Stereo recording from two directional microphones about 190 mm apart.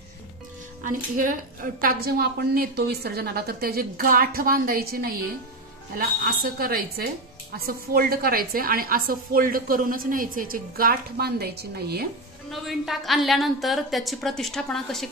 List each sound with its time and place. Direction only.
0.8 s a woman's voice: 45° right (ahead or behind)
12.4 s a woman's voice: centre (ahead or behind)